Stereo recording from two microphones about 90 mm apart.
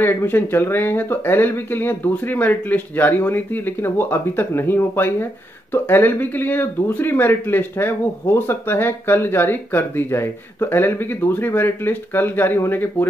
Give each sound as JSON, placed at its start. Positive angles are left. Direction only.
{"t": 0.0, "sound": "speech", "side_deg": 25}